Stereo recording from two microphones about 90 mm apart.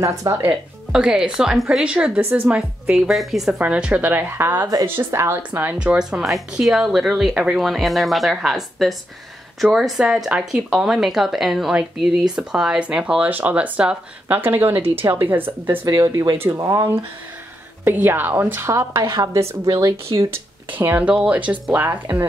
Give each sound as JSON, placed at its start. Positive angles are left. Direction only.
{"t": 0.0, "sound": "speech", "side_deg": -35}
{"t": 0.4, "sound": "speech", "side_deg": -10}
{"t": 2.5, "sound": "speech", "side_deg": -5}
{"t": 3.5, "sound": "a woman's voice", "side_deg": -15}
{"t": 5.5, "sound": "a woman's voice", "side_deg": -15}
{"t": 15.8, "sound": "speech", "side_deg": -45}
{"t": 17.8, "sound": "a woman's voice", "side_deg": -25}
{"t": 18.9, "sound": "a woman's voice", "side_deg": -50}
{"t": 19.3, "sound": "speech", "side_deg": -40}
{"t": 21.7, "sound": "a woman's voice", "side_deg": -20}